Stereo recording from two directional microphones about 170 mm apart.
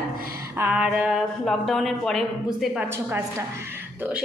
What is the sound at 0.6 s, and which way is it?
A woman's voice, 5° right (ahead or behind).